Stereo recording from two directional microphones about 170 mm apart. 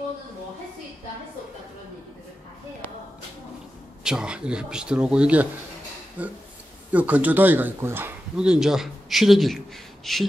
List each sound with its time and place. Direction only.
4.0 s speech: 5° right (ahead or behind)